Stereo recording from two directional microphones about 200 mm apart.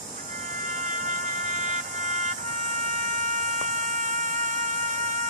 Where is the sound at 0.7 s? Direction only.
40° right (ahead or behind).